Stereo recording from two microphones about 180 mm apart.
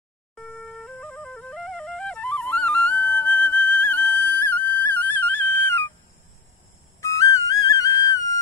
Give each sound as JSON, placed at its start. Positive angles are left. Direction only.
{"t": 0.4, "sound": "music", "side_deg": 0}
{"t": 7.0, "sound": "whistle", "side_deg": 20}